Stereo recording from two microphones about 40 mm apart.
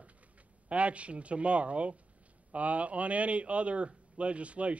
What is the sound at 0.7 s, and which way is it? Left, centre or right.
Speech, right.